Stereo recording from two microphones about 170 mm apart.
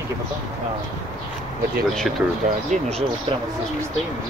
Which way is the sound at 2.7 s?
45° right (ahead or behind).